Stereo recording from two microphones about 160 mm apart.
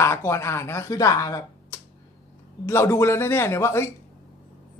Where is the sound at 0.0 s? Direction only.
15° left (ahead or behind).